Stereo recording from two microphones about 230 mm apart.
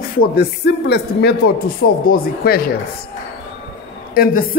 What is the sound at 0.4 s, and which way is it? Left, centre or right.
A man's voice, left.